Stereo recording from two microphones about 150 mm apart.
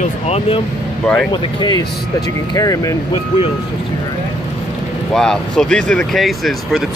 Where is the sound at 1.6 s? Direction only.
25° left (ahead or behind).